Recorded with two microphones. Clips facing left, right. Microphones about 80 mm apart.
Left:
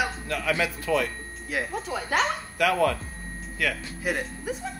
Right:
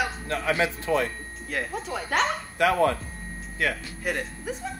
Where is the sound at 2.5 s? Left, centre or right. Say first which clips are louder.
Right 1 dB; right.